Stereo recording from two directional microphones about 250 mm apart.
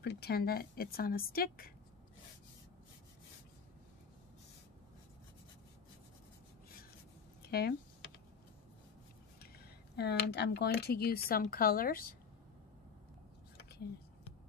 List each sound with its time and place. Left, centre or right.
0.0 s a woman's voice: left
7.4 s speech: left
9.4 s speech: left